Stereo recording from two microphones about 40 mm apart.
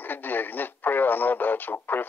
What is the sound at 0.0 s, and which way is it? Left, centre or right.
Speech, left.